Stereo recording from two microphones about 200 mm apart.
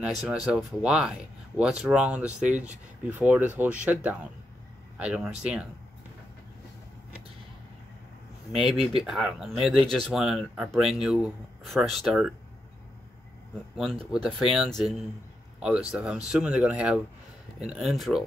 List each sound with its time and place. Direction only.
0.0 s speech: 5° right (ahead or behind)
8.5 s speech: centre (ahead or behind)
14.1 s speech: centre (ahead or behind)